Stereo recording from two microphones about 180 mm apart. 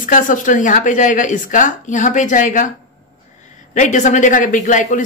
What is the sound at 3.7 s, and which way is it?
A woman's voice, 45° left (ahead or behind).